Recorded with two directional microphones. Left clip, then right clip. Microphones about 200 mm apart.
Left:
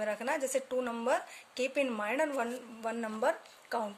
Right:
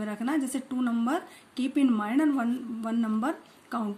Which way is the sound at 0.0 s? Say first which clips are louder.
Right 2 dB; 25° left (ahead or behind).